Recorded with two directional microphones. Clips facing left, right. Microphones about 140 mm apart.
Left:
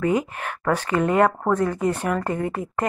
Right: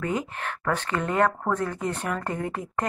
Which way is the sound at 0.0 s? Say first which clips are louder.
Left 6 dB; 10° left (ahead or behind).